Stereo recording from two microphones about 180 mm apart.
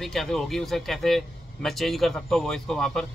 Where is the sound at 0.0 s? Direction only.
Centre (ahead or behind).